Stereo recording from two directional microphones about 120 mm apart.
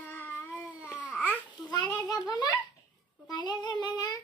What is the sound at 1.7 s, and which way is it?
A child's voice, 35° left (ahead or behind).